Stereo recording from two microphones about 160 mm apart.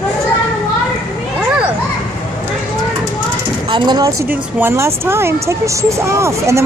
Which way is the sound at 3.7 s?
30° right (ahead or behind).